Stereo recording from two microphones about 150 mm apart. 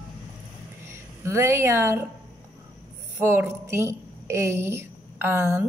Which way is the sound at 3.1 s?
15° right (ahead or behind).